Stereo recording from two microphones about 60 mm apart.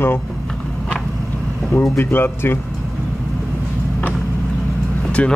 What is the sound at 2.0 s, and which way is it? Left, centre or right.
Speech, left.